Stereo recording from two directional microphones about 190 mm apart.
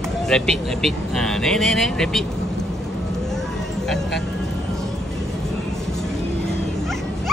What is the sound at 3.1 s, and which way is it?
Vehicle, centre (ahead or behind).